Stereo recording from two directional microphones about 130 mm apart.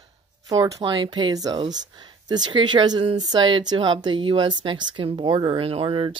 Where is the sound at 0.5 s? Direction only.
30° right (ahead or behind).